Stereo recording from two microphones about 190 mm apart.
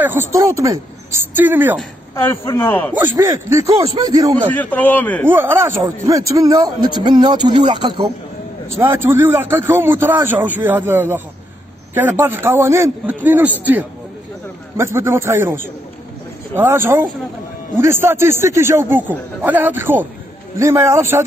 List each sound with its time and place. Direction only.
0.0 s a man's voice: 15° right (ahead or behind)
2.4 s a man's voice: 10° left (ahead or behind)
3.2 s a man's voice: 15° right (ahead or behind)
4.5 s a man's voice: 10° left (ahead or behind)
5.2 s a man's voice: 10° right (ahead or behind)
8.8 s a man's voice: 15° right (ahead or behind)
14.8 s a man's voice: 15° right (ahead or behind)